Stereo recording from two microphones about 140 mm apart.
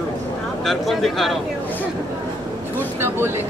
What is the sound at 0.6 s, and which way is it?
Speech, centre (ahead or behind).